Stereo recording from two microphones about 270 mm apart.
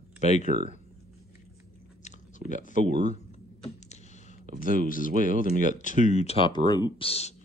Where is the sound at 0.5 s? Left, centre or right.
Right.